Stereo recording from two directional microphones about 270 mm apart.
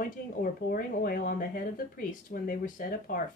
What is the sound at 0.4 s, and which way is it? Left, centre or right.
Speech, left.